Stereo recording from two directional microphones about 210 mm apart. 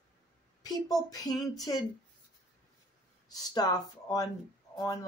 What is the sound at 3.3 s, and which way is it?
Speech, 20° left (ahead or behind).